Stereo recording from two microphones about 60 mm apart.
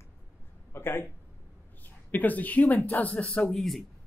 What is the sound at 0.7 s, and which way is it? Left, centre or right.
Speech, left.